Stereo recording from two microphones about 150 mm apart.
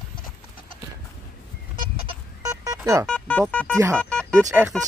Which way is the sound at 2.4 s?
25° right (ahead or behind).